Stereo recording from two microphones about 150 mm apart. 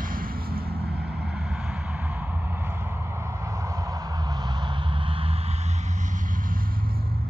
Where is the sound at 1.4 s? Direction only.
Centre (ahead or behind); by 5.5 s 40° right (ahead or behind).